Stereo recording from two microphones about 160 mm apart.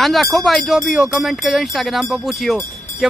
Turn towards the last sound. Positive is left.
turn(degrees=0)  # may be behind; listen again after turning